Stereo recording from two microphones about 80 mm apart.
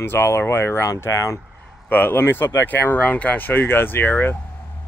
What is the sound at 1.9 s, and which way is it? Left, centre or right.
Speech, left.